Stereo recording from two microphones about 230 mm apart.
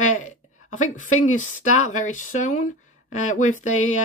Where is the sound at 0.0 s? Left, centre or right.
Left.